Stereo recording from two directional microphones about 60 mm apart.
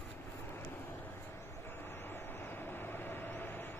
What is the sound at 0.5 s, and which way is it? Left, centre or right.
Vehicle, left.